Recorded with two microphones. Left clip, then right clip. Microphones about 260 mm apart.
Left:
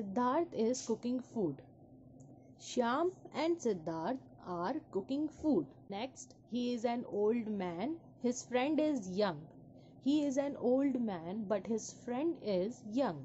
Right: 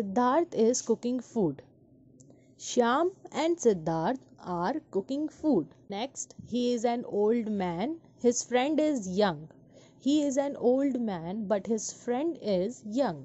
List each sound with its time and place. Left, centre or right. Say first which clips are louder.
0.1 s speech: right 7 dB; right